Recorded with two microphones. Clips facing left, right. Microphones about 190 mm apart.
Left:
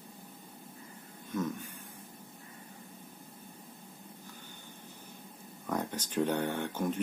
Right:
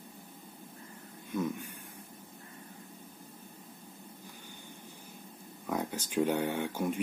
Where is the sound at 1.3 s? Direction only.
10° right (ahead or behind).